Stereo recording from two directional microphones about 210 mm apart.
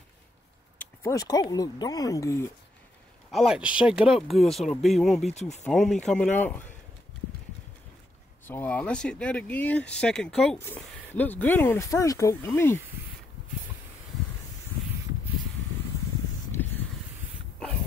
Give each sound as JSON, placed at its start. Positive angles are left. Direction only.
{"t": 0.7, "sound": "speech", "side_deg": 15}
{"t": 3.3, "sound": "speech", "side_deg": 0}
{"t": 8.5, "sound": "speech", "side_deg": 10}